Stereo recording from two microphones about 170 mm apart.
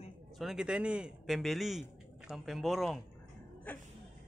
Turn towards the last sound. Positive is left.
turn(degrees=10)  # may be behind; listen again after turning